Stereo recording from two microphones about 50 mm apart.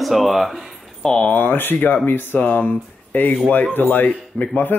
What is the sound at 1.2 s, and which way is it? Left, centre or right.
Speech, left.